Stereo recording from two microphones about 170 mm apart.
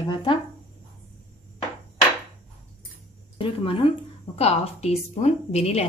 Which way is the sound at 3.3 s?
35° left (ahead or behind).